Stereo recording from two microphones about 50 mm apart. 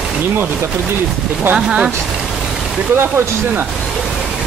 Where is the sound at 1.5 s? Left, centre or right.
Right.